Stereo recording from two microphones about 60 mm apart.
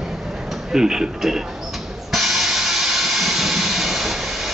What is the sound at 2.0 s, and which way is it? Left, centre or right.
Steam, centre.